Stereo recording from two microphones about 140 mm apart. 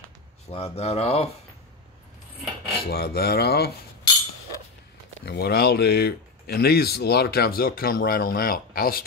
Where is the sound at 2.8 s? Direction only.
90° left.